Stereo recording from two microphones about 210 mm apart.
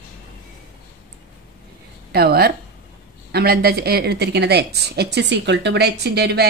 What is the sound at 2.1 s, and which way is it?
A woman's voice, 45° right (ahead or behind).